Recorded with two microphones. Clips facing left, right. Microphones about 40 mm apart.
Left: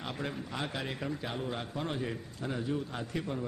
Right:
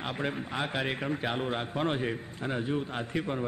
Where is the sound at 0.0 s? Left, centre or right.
Right.